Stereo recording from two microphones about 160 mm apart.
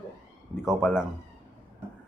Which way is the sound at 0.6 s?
Centre (ahead or behind).